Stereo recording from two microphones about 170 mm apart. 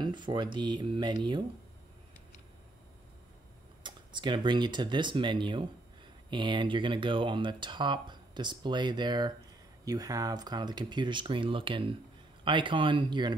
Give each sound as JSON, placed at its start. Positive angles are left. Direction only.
{"t": 0.0, "sound": "speech", "side_deg": -25}
{"t": 3.8, "sound": "speech", "side_deg": -25}